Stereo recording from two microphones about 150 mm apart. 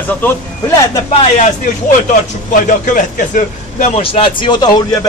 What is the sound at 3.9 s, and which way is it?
Speech, 35° left (ahead or behind).